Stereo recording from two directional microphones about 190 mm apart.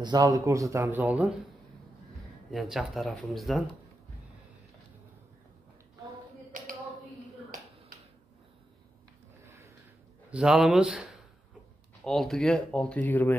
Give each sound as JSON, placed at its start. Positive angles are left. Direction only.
{"t": 0.0, "sound": "speech", "side_deg": -20}
{"t": 2.5, "sound": "speech", "side_deg": 0}
{"t": 6.5, "sound": "a sound", "side_deg": -45}
{"t": 10.3, "sound": "speech", "side_deg": -5}